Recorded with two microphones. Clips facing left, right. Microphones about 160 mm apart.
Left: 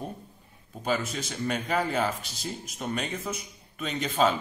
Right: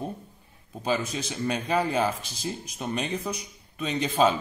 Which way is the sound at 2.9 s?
20° right (ahead or behind).